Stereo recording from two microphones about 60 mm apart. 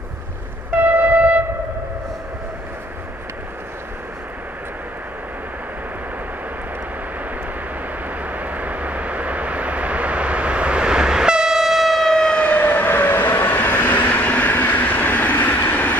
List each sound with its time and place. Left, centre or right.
0.7 s music: right
8.2 s vehicle: right; by 15.6 s left
15.7 s train: left